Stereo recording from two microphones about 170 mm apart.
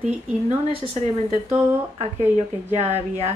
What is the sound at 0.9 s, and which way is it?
A woman's voice, 40° right (ahead or behind).